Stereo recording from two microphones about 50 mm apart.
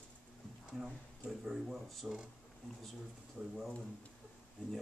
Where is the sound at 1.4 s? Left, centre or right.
Centre.